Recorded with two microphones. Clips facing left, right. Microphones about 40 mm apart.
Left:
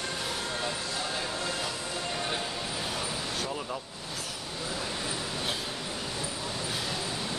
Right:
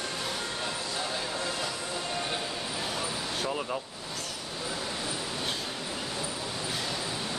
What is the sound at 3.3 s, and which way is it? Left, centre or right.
Vehicle, centre.